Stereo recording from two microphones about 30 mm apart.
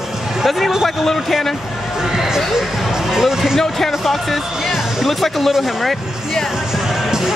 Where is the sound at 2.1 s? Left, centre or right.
Centre.